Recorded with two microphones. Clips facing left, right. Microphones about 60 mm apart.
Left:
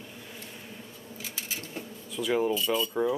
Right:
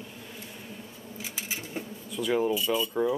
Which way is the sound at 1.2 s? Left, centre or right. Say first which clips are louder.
Right 2 dB; centre.